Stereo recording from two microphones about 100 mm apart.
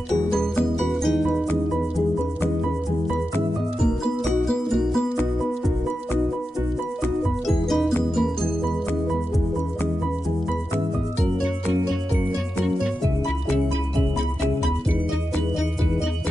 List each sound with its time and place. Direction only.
0.7 s music: centre (ahead or behind)
4.2 s music: 5° left (ahead or behind)
7.4 s music: centre (ahead or behind)